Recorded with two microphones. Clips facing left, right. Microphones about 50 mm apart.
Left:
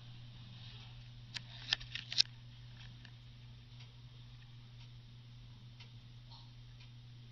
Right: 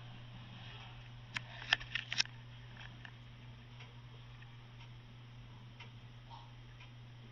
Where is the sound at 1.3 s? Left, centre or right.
Right.